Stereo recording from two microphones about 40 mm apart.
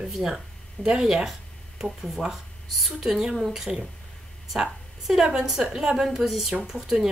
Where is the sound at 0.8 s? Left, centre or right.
Left.